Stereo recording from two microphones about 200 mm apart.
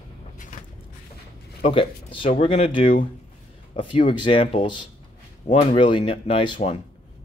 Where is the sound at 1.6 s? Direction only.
25° left (ahead or behind).